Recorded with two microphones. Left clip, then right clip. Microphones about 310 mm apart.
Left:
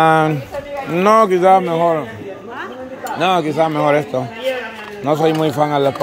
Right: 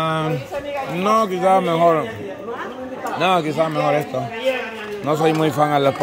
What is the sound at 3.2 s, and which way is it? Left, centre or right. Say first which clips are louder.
A man's voice: left 3 dB; centre.